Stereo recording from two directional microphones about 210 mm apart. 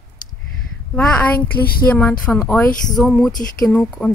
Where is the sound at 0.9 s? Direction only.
5° left (ahead or behind).